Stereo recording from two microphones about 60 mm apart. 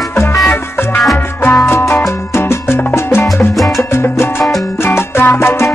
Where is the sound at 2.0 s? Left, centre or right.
Left.